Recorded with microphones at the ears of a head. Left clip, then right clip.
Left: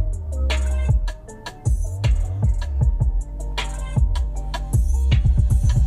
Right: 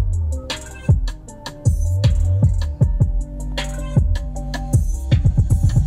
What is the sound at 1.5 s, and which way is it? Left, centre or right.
Music, right.